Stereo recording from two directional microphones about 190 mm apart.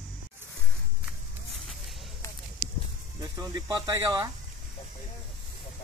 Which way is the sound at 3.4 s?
20° right (ahead or behind).